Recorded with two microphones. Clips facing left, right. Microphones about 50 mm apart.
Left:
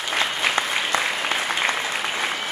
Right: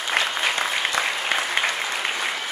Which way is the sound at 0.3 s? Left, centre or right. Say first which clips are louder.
Left 1 dB; centre.